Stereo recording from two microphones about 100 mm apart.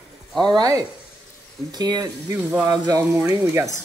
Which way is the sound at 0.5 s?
40° right (ahead or behind).